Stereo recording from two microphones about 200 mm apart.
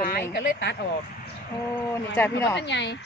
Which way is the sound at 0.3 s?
55° left (ahead or behind).